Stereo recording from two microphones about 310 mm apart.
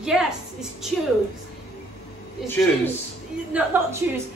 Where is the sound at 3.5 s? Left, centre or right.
Centre.